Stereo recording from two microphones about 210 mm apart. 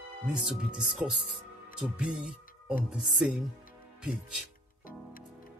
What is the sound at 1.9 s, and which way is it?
Speech, 5° right (ahead or behind).